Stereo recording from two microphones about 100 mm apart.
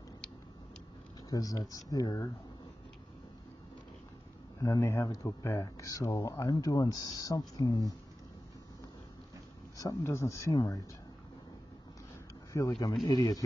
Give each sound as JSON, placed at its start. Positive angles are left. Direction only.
{"t": 1.3, "sound": "speech", "side_deg": 40}
{"t": 4.6, "sound": "speech", "side_deg": 35}
{"t": 9.8, "sound": "speech", "side_deg": 30}
{"t": 12.5, "sound": "speech", "side_deg": 35}